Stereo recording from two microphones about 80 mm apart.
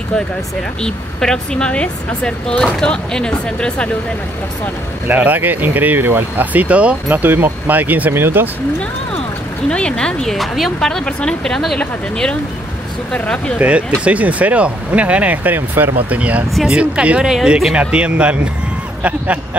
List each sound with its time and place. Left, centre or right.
0.8 s speech: centre
5.0 s speech: right
9.7 s speech: centre
11.8 s speech: centre
13.6 s speech: centre
17.7 s speech: centre